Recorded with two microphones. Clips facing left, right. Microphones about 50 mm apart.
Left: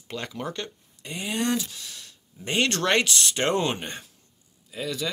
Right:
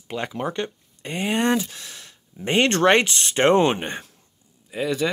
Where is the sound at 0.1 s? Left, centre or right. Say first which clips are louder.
Right 5 dB; right.